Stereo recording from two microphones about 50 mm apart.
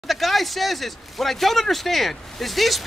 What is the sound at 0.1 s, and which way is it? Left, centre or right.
Speech, centre.